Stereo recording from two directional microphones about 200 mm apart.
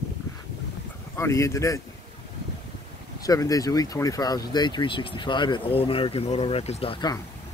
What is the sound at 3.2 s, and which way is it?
Speech, 15° left (ahead or behind).